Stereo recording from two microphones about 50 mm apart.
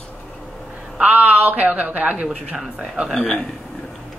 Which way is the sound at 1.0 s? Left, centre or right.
Right.